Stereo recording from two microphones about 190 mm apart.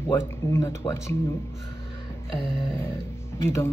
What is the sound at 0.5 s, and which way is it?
Speech, 15° left (ahead or behind).